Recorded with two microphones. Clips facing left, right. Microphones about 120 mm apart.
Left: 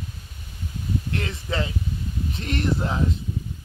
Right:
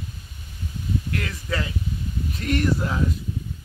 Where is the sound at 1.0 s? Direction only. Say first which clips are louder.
Even; 30° left (ahead or behind).